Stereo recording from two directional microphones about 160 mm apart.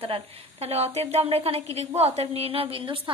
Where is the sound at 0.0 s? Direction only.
35° right (ahead or behind).